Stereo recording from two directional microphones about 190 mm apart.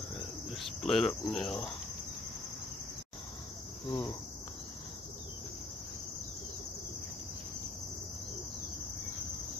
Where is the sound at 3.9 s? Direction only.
20° left (ahead or behind).